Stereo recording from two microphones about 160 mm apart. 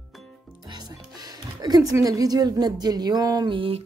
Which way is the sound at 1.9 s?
20° right (ahead or behind).